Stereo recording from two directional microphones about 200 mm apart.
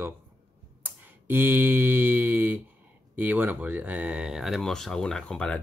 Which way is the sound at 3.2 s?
10° right (ahead or behind).